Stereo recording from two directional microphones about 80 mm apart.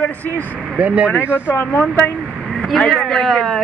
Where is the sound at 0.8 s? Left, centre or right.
Centre.